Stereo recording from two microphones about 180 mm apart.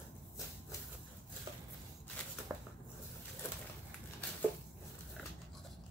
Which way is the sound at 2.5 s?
15° right (ahead or behind).